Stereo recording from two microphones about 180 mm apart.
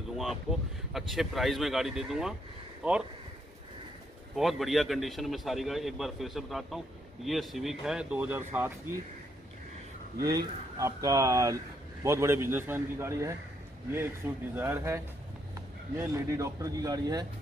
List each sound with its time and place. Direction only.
0.1 s a man's voice: centre (ahead or behind)
4.4 s a man's voice: centre (ahead or behind)
10.2 s speech: 20° right (ahead or behind)
14.5 s speech: 10° right (ahead or behind)
16.0 s speech: 15° right (ahead or behind)